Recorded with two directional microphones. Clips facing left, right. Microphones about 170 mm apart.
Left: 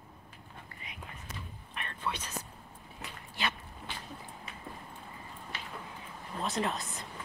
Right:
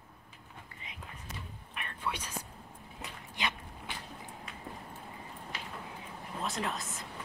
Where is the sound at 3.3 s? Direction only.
15° right (ahead or behind).